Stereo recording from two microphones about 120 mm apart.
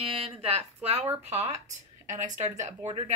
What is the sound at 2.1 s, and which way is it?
Speech, 90° right.